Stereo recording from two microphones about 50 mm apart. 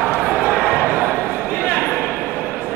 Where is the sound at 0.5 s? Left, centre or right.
Centre.